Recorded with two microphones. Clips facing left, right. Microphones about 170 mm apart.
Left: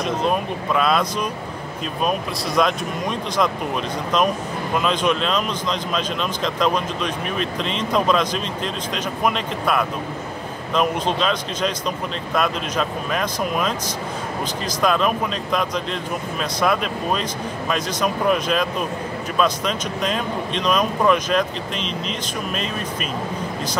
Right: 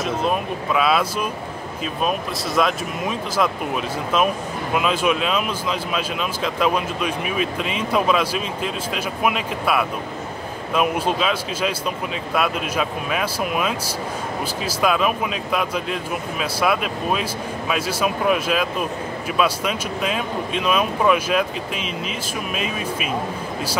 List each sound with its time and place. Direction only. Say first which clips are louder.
0.0 s speech: left 1 dB; 5° right (ahead or behind)
2.0 s speech: left 1 dB; centre (ahead or behind)
4.7 s speech: even; 5° right (ahead or behind)
14.8 s speech: even; 5° right (ahead or behind)